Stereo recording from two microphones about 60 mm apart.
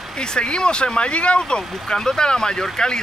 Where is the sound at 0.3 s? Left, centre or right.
Centre.